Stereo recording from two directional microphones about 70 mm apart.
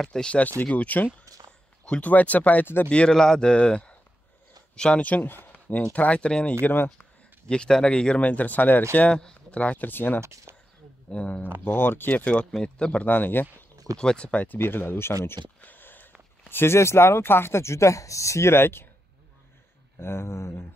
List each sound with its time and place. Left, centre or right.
0.0 s speech: centre; by 2.9 s left
2.9 s speech: centre
5.9 s speech: centre
6.6 s speech: left
7.4 s speech: centre; by 10.2 s left
10.2 s speech: right
11.1 s speech: centre
11.6 s speech: left
12.3 s speech: centre
13.1 s speech: left
13.9 s speech: centre; by 15.1 s left
15.6 s a sound: left
16.4 s speech: left
20.0 s speech: left